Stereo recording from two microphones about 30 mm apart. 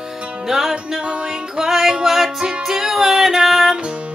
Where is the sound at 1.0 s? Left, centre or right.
Right.